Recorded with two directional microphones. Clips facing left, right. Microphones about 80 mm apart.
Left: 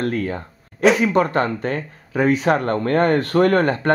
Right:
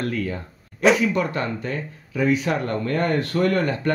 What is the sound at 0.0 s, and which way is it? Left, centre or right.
A man's voice, left.